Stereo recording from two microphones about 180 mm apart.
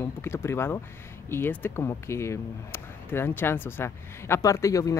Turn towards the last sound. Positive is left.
turn(degrees=20)  # may be behind; listen again after turning